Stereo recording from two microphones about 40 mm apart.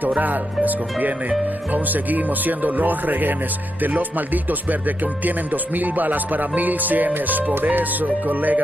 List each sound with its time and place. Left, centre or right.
0.2 s speech: right